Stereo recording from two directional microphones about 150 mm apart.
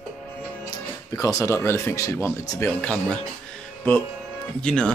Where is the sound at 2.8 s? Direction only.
5° left (ahead or behind).